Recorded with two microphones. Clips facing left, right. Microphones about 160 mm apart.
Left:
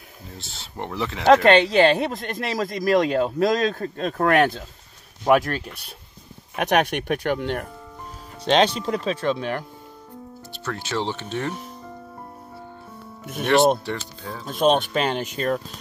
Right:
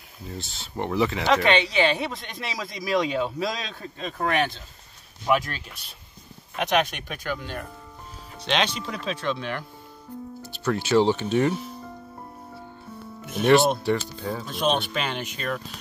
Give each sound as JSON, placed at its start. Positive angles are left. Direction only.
{"t": 0.4, "sound": "speech", "side_deg": 0}
{"t": 1.2, "sound": "speech", "side_deg": 45}
{"t": 8.5, "sound": "speech", "side_deg": 40}
{"t": 10.5, "sound": "speech", "side_deg": -10}
{"t": 13.8, "sound": "speech", "side_deg": -5}
{"t": 14.5, "sound": "speech", "side_deg": 45}